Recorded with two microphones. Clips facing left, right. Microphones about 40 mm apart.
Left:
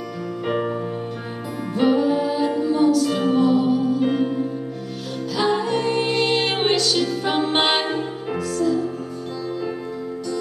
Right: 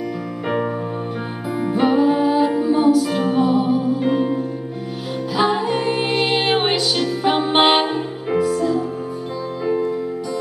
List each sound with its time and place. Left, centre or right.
0.5 s music: centre
1.6 s music: centre